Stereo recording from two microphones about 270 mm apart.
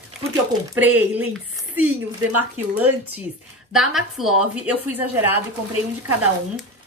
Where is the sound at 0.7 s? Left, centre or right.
Centre.